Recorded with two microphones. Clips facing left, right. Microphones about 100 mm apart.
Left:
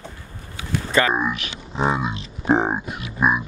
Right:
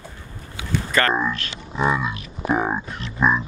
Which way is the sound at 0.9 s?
15° left (ahead or behind).